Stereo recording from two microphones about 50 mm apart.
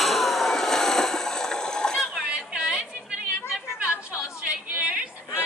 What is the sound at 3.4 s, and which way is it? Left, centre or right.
Chatter, left.